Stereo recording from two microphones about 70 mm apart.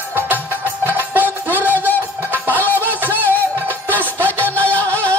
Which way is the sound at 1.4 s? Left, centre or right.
Right.